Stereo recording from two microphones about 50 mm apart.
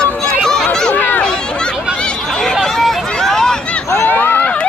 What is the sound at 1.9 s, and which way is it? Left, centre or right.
Hubbub, centre.